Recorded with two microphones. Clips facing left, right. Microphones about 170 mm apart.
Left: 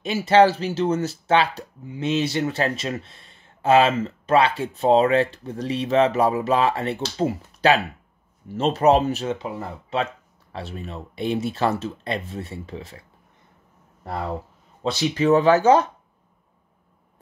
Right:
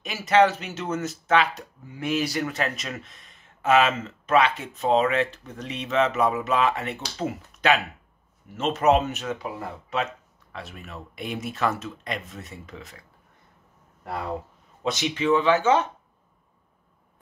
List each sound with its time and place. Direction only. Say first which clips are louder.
0.0 s speech: left 4 dB; 30° left (ahead or behind)
14.8 s speech: left 4 dB; 30° left (ahead or behind)